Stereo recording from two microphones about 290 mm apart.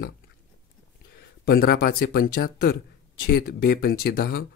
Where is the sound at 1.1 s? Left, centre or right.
Left.